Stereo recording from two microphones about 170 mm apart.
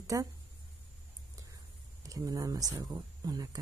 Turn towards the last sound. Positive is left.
turn(degrees=-20)  # may be behind; listen again after turning